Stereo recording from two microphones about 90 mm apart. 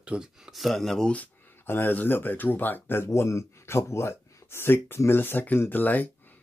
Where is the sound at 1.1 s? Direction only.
20° left (ahead or behind).